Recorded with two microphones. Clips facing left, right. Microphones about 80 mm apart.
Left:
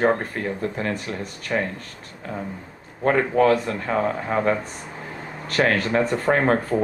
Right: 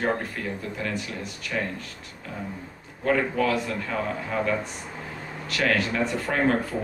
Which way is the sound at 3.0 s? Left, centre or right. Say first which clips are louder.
Left 6 dB; left.